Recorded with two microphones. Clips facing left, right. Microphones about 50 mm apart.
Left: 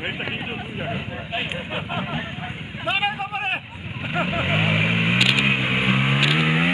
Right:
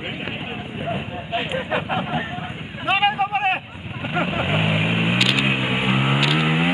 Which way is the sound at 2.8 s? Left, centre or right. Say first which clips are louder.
Right 5 dB; right.